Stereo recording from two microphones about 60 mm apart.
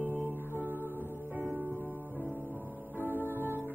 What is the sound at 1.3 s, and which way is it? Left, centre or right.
Music, right.